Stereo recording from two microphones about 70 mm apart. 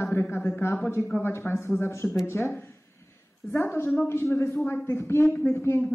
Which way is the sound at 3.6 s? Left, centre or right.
Left.